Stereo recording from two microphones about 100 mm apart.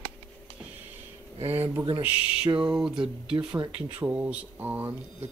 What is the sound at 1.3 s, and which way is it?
Speech, 80° right.